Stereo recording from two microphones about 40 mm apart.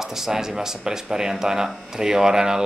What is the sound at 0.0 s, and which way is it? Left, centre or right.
Speech, centre.